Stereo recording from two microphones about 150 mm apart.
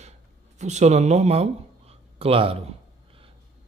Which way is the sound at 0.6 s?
50° right (ahead or behind).